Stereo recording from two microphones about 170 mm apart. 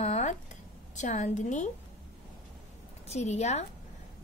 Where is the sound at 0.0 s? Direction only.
40° left (ahead or behind).